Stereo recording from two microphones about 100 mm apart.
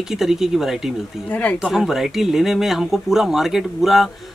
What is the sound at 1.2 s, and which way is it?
Speech, 15° left (ahead or behind).